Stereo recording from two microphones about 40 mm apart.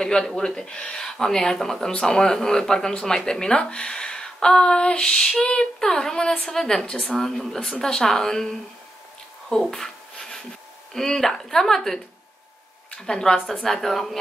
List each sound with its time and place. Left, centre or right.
0.0 s a sound: centre
0.4 s speech: centre
7.2 s speech: centre
9.7 s rub: centre
11.0 s speech: centre
13.0 s speech: centre